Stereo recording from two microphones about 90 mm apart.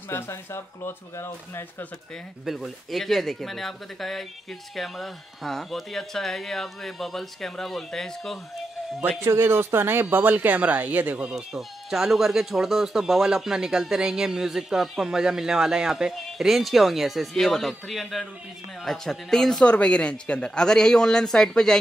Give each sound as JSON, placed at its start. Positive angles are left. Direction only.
{"t": 0.1, "sound": "speech", "side_deg": 25}
{"t": 2.4, "sound": "speech", "side_deg": 0}
{"t": 9.2, "sound": "speech", "side_deg": -30}